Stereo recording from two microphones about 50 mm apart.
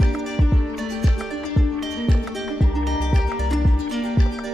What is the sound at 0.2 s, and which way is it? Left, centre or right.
Music, centre.